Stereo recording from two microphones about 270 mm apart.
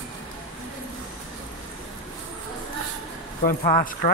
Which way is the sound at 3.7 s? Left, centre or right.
Left.